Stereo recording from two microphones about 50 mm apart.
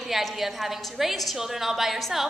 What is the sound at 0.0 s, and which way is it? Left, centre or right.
A woman's voice, centre.